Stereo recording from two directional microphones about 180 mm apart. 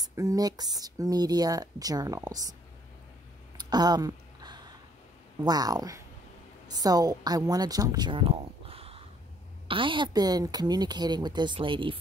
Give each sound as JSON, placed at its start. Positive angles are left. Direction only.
{"t": 0.0, "sound": "speech", "side_deg": -20}
{"t": 3.5, "sound": "a sound", "side_deg": -20}
{"t": 5.4, "sound": "a woman's voice", "side_deg": -20}